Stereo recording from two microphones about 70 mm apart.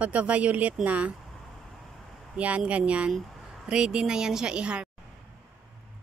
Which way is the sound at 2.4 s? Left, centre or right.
Centre.